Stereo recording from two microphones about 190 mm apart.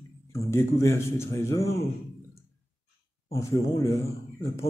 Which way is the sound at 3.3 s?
15° left (ahead or behind).